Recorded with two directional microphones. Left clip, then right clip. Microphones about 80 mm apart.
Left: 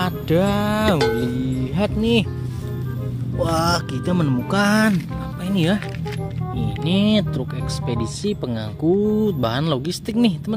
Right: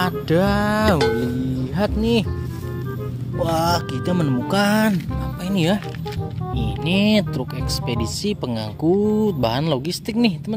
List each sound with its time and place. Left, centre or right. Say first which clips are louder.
0.0 s music: right 1 dB; centre
1.8 s speech: even; centre
3.3 s speech: even; centre
5.4 s music: right 1 dB; centre
6.5 s speech: right 1 dB; centre